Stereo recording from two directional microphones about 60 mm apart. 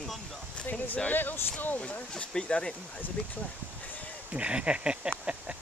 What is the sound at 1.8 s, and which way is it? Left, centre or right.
Speech, left.